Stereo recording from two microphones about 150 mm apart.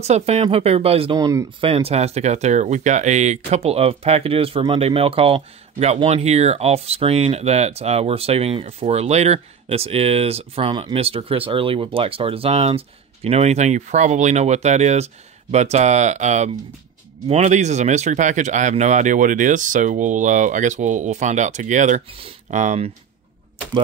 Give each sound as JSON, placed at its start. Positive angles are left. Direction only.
{"t": 0.0, "sound": "speech", "side_deg": -45}
{"t": 1.1, "sound": "speech", "side_deg": -20}
{"t": 1.6, "sound": "speech", "side_deg": -40}